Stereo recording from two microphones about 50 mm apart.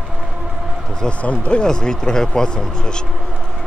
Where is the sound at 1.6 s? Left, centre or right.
Centre.